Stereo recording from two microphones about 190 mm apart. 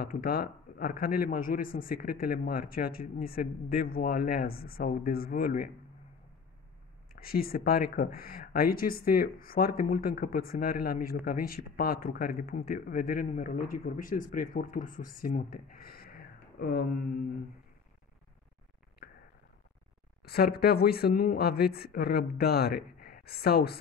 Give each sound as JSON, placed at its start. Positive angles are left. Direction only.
{"t": 0.0, "sound": "a man's voice", "side_deg": 50}
{"t": 7.2, "sound": "a man's voice", "side_deg": 50}
{"t": 19.0, "sound": "a sound", "side_deg": 55}
{"t": 20.2, "sound": "speech", "side_deg": 55}